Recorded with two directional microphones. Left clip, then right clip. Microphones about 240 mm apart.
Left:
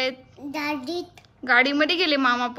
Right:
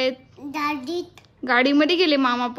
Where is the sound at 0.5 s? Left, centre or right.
Centre.